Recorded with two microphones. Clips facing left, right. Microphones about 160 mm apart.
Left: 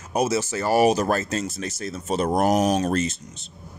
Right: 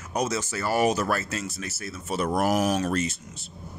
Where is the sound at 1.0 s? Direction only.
30° left (ahead or behind).